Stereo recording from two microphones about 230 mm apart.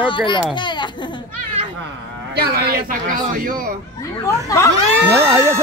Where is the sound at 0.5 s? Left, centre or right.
Centre.